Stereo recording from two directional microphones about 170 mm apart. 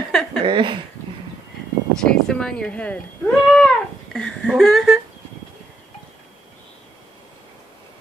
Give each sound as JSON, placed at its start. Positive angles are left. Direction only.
{"t": 0.1, "sound": "a sound", "side_deg": 0}
{"t": 0.5, "sound": "speech", "side_deg": -30}
{"t": 2.0, "sound": "speech", "side_deg": 5}